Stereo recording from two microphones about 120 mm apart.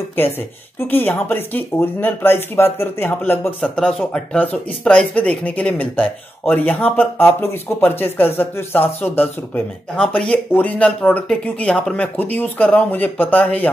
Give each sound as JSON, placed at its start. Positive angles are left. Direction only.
{"t": 0.7, "sound": "speech", "side_deg": 15}